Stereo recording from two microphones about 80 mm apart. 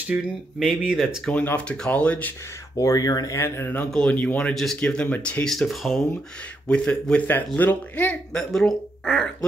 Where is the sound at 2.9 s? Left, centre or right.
Left.